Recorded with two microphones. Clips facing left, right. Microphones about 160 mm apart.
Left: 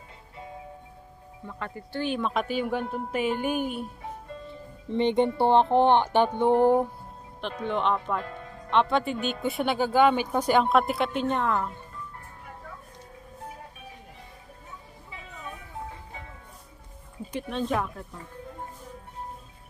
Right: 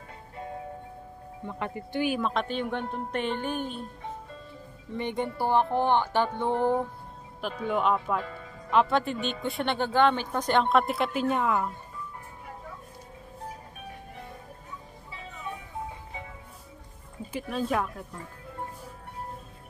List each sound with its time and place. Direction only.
1.5 s wind chime: 20° right (ahead or behind)
2.1 s a woman's voice: 5° left (ahead or behind)
4.9 s speech: 25° left (ahead or behind)
7.6 s speech: 5° right (ahead or behind)
17.3 s speech: 5° right (ahead or behind)